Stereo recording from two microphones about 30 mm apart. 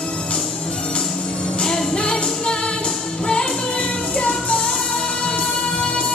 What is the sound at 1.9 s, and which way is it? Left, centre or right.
Music, left.